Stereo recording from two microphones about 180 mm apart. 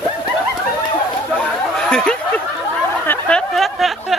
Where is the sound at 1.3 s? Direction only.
5° left (ahead or behind).